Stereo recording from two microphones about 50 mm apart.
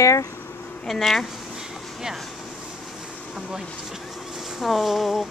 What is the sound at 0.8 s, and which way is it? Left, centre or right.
Speech, centre.